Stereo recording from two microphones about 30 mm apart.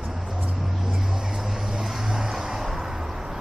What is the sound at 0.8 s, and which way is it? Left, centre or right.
Vehicle, centre.